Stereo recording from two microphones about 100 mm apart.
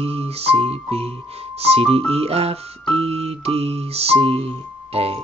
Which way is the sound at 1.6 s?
90° right.